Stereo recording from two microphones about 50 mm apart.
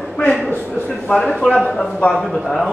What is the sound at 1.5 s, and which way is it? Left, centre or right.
Speech, centre.